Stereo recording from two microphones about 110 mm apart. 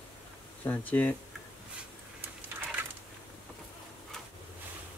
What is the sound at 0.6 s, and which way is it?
Speech, 15° left (ahead or behind).